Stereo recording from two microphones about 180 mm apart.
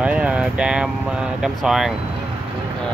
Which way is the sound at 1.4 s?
Centre (ahead or behind).